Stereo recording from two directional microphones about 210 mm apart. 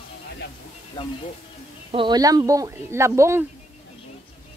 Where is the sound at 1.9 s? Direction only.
20° right (ahead or behind).